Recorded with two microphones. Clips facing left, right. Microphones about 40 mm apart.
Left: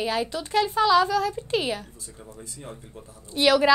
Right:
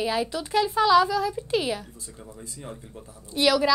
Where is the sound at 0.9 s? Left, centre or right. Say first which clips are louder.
Even; left.